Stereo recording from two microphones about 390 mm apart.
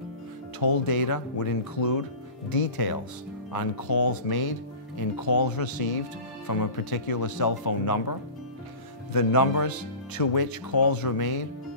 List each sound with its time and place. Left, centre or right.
0.6 s speech: left
4.1 s speech: left
9.1 s speech: left